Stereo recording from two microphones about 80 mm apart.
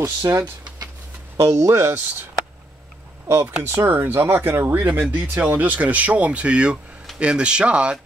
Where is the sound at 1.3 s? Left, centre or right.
Right.